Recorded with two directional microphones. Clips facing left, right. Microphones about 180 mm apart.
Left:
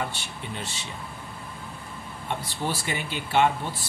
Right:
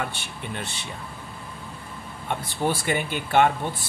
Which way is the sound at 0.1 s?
55° right (ahead or behind).